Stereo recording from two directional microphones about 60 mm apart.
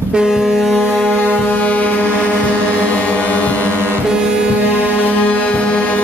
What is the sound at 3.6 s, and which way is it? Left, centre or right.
Music, right.